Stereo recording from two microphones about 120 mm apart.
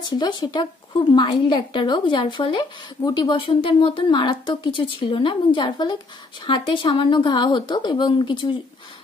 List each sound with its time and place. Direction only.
0.1 s a woman's voice: 40° left (ahead or behind)